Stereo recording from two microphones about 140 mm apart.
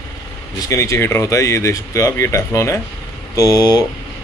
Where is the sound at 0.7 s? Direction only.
20° left (ahead or behind).